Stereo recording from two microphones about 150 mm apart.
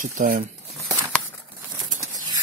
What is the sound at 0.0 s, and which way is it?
Speech, 65° right (ahead or behind).